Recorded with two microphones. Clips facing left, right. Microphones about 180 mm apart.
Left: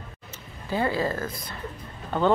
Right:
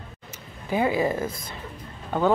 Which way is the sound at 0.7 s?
15° right (ahead or behind).